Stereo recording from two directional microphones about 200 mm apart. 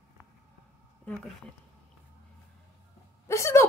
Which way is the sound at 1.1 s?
5° left (ahead or behind).